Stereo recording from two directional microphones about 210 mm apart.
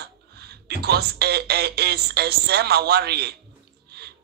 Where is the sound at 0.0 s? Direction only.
50° right (ahead or behind).